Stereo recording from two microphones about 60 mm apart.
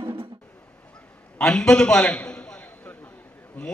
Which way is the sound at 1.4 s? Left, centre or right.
Centre.